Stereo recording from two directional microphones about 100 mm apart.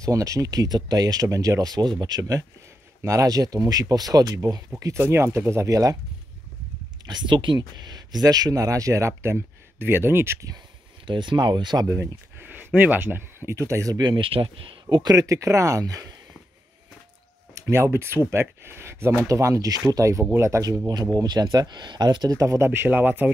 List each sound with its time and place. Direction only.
0.0 s speech: 35° right (ahead or behind)
4.7 s speech: 25° right (ahead or behind)
7.1 s speech: 50° right (ahead or behind); by 10.5 s 25° right (ahead or behind)
11.1 s speech: 50° right (ahead or behind); by 12.1 s 35° right (ahead or behind)
12.4 s speech: 20° right (ahead or behind); by 15.1 s 50° right (ahead or behind)
15.1 s speech: 35° right (ahead or behind)
17.6 s speech: 30° right (ahead or behind)
20.8 s speech: 40° right (ahead or behind); by 23.3 s 15° right (ahead or behind)